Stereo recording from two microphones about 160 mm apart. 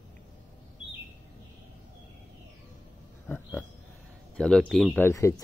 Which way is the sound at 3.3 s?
10° left (ahead or behind).